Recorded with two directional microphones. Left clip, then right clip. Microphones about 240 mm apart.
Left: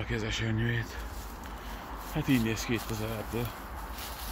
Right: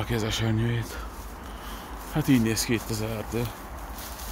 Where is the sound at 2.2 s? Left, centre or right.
Right.